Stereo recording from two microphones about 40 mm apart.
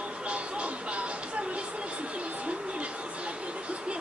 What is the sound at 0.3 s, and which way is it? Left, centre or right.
Music, right.